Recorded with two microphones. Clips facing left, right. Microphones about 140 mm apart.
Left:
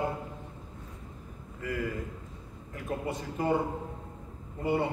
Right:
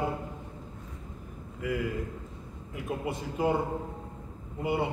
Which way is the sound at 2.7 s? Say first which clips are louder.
Right 1 dB; 15° right (ahead or behind).